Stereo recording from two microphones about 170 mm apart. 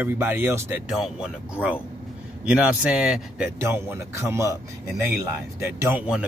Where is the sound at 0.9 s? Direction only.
5° right (ahead or behind).